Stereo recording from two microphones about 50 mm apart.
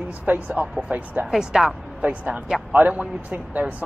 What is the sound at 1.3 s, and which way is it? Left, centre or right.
Speech, centre.